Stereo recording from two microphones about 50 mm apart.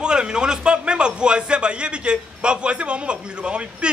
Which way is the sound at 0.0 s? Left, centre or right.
Centre.